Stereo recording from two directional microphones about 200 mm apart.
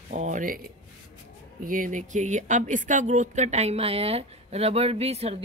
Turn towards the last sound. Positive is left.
turn(degrees=-30)  # may be behind; listen again after turning